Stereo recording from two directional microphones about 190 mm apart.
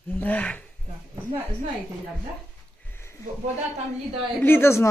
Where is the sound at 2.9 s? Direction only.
15° left (ahead or behind).